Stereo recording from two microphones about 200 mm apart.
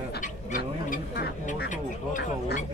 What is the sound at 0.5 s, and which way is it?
Speech, 45° left (ahead or behind).